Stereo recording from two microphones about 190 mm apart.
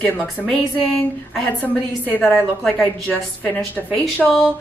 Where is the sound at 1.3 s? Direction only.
5° left (ahead or behind).